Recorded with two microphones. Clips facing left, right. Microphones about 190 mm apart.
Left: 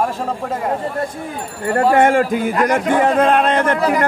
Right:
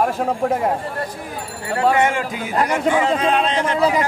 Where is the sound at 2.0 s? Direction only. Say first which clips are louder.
Left 6 dB; 55° left (ahead or behind).